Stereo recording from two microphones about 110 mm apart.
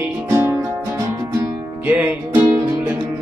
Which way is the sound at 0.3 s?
20° right (ahead or behind).